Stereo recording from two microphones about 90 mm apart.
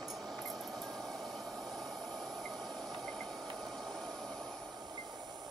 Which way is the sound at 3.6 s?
Centre (ahead or behind).